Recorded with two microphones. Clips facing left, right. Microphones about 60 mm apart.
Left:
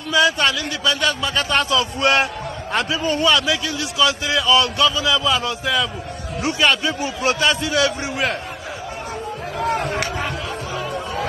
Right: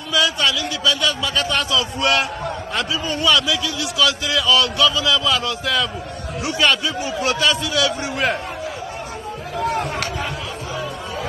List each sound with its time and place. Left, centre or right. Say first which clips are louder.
0.1 s a man's voice: left 2 dB; left
6.6 s a man's voice: even; left